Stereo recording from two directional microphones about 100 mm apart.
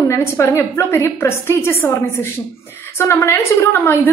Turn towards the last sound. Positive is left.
turn(degrees=20)  # may be behind; listen again after turning